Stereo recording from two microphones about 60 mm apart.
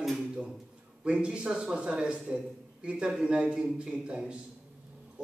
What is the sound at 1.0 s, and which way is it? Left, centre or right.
A man's voice, centre.